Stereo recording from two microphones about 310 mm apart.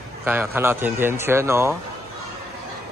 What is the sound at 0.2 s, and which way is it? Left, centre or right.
Speech, centre.